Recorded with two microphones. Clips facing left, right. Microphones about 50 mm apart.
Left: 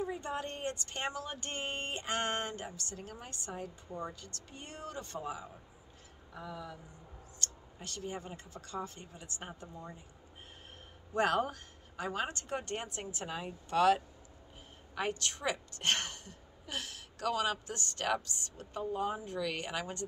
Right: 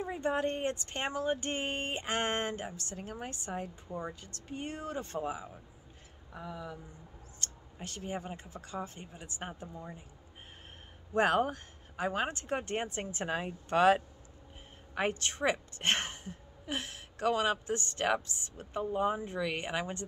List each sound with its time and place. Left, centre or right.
0.0 s a woman's voice: right
6.3 s speech: centre
11.1 s a woman's voice: right